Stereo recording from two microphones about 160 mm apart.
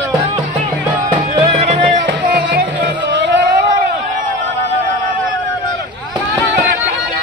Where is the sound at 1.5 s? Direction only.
45° right (ahead or behind).